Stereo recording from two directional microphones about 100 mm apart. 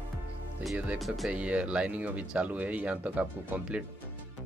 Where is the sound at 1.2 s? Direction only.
10° right (ahead or behind).